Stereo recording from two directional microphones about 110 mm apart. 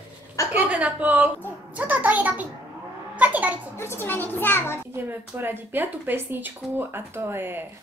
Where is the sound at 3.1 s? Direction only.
15° right (ahead or behind).